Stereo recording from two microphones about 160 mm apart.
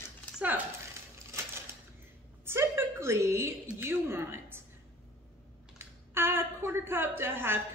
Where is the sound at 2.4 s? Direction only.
15° right (ahead or behind).